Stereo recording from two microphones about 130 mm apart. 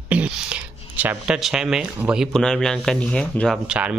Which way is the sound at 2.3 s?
5° left (ahead or behind).